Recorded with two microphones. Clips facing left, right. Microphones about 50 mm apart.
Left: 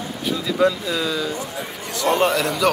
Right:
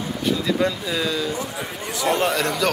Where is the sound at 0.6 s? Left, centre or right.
Centre.